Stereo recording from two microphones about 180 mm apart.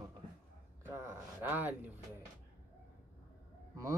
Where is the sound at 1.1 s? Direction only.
10° right (ahead or behind).